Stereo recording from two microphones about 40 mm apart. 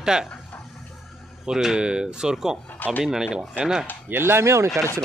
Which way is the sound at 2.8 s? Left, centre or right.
Left.